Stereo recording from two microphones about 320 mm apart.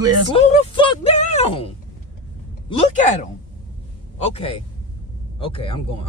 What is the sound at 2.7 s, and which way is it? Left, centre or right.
Speech, centre.